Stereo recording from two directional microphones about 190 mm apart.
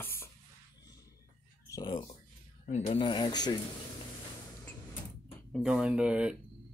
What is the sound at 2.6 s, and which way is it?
Speech, 35° left (ahead or behind).